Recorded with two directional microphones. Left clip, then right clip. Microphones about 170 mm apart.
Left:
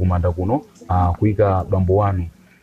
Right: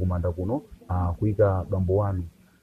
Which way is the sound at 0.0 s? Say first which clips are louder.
Left 8 dB; centre (ahead or behind).